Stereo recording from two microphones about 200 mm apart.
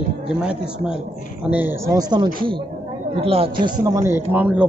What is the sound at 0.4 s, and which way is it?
A man's voice, 5° right (ahead or behind).